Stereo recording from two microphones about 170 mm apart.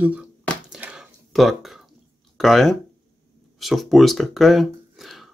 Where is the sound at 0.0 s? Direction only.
5° right (ahead or behind).